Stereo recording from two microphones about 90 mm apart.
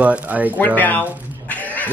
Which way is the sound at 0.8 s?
20° left (ahead or behind).